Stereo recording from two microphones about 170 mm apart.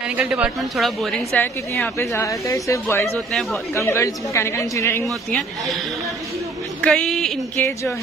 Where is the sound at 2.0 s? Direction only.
15° left (ahead or behind).